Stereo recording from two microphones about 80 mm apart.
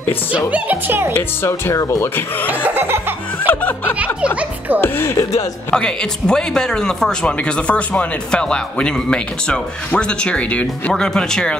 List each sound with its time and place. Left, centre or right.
0.5 s laughter: right
1.5 s speech: left
2.4 s laughter: right
3.4 s music: left
4.7 s speech: left
5.7 s speech: centre